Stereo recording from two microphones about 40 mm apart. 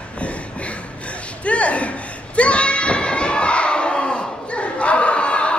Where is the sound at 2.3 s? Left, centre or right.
Left.